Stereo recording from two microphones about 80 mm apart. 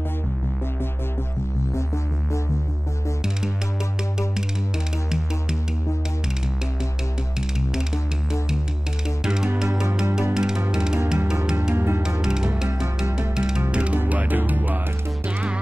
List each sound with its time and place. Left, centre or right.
7.7 s music: centre
11.7 s music: right
12.0 s music: centre